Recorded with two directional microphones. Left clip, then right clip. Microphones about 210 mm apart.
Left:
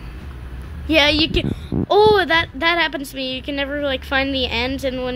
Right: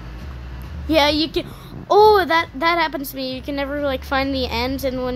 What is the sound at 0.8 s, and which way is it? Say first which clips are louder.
A child's voice: left 2 dB; centre (ahead or behind).